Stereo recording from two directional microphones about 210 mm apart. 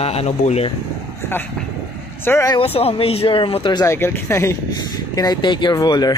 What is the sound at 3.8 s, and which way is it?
Speech, 10° left (ahead or behind).